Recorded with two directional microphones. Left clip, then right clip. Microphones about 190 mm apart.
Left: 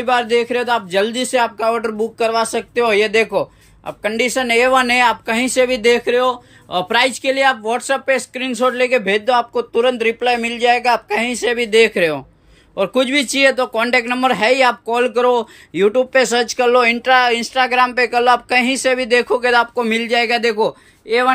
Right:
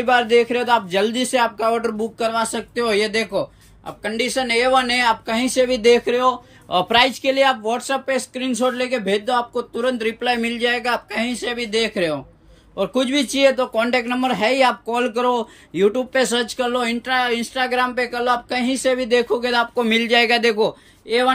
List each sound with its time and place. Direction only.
0.0 s a man's voice: centre (ahead or behind)